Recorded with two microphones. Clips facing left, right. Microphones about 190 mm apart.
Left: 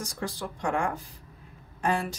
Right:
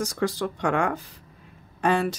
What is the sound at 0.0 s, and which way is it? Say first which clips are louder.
Speech: right 8 dB; 80° right.